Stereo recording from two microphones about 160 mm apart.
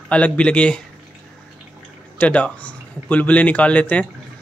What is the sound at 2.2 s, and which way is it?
Speech, 10° left (ahead or behind).